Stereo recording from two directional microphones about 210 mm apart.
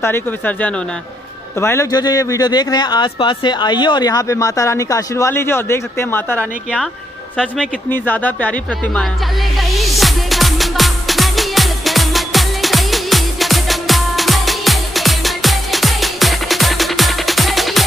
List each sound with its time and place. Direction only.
0.0 s speech: 10° left (ahead or behind)
9.6 s music: centre (ahead or behind)